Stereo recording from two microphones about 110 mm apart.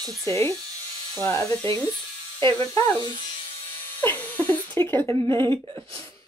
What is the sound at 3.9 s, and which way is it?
Speech, 15° left (ahead or behind).